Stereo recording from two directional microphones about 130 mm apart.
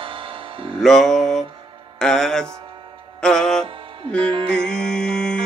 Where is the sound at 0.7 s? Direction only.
Centre (ahead or behind).